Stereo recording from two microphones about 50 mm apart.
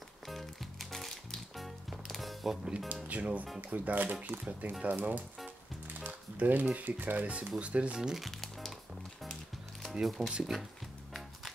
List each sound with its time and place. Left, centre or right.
0.3 s music: centre
3.1 s speech: right
7.3 s speech: right
8.3 s music: centre
10.0 s speech: centre